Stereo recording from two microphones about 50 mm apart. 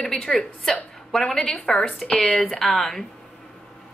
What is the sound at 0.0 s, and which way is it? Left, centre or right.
A woman's voice, centre.